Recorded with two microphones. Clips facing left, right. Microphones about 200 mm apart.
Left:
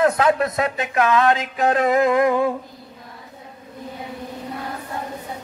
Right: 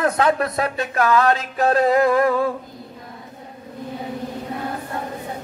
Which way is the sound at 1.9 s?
20° left (ahead or behind).